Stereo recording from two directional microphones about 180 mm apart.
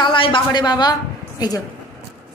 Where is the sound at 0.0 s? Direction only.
30° left (ahead or behind).